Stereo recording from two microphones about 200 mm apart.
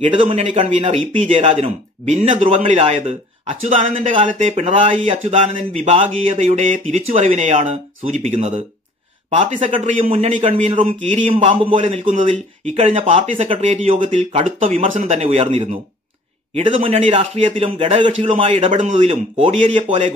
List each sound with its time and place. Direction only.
0.0 s a man's voice: 25° right (ahead or behind)